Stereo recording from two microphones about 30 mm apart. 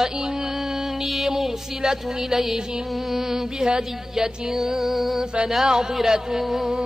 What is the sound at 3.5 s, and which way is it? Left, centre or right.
Speech, right.